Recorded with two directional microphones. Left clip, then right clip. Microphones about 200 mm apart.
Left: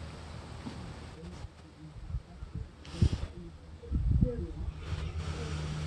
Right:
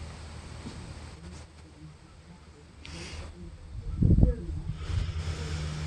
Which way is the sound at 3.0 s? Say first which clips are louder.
Left 7 dB; 25° left (ahead or behind).